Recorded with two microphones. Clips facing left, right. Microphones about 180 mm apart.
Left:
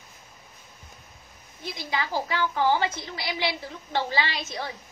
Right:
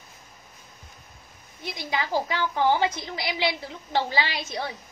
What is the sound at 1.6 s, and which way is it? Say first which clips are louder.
A woman's voice: right 1 dB; 15° right (ahead or behind).